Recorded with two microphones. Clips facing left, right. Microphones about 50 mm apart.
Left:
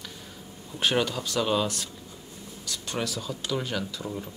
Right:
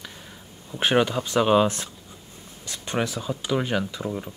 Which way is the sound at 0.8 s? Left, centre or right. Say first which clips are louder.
Right 5 dB; right.